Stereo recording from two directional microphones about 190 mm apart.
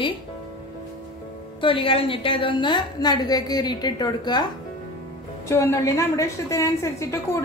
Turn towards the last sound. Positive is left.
turn(degrees=15)  # may be behind; listen again after turning